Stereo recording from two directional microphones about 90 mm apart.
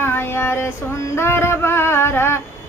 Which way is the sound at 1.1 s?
30° left (ahead or behind).